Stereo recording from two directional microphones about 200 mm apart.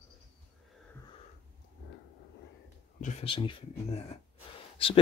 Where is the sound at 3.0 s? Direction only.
35° left (ahead or behind).